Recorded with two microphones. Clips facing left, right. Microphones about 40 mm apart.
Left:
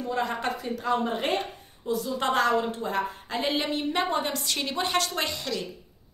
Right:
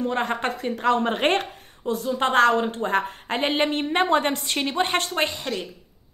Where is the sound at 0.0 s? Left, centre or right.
Right.